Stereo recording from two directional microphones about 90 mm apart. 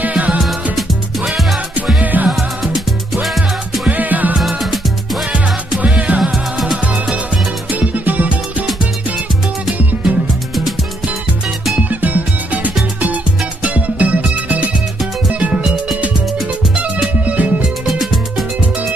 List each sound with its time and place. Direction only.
0.0 s music: 15° right (ahead or behind)
0.4 s music: centre (ahead or behind)
1.9 s music: 15° right (ahead or behind)
2.6 s music: 5° right (ahead or behind)
3.8 s music: 20° right (ahead or behind)
4.4 s music: centre (ahead or behind)
5.3 s music: 15° right (ahead or behind)
7.9 s music: 15° right (ahead or behind)
11.9 s music: 20° right (ahead or behind)
17.3 s music: 15° right (ahead or behind)